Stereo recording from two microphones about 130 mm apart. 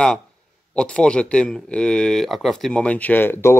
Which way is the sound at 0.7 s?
5° left (ahead or behind).